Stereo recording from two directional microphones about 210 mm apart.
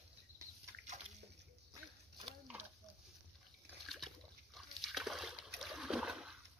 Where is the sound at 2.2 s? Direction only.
5° right (ahead or behind).